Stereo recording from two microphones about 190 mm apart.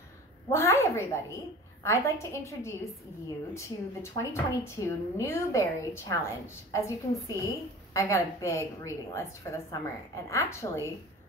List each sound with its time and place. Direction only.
0.5 s a woman's voice: 15° left (ahead or behind)